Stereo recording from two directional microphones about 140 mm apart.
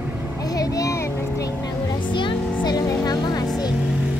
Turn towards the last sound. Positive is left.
turn(degrees=30)  # may be behind; listen again after turning